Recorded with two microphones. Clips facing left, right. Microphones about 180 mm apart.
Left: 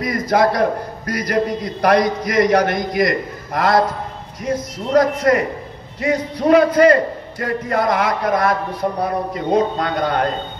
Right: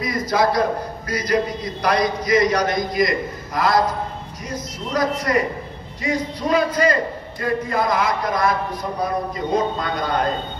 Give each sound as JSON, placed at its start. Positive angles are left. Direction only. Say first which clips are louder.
{"t": 0.0, "sound": "a man's voice", "louder": "left 3 dB", "side_deg": 55}